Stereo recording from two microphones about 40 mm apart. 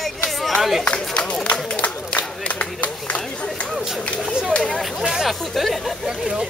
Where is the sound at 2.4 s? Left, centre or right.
Left.